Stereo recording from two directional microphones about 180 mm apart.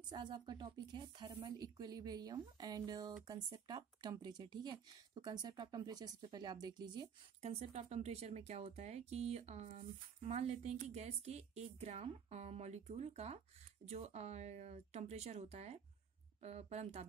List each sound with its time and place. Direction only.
0.1 s a woman's voice: 25° right (ahead or behind)
7.4 s a woman's voice: 40° right (ahead or behind)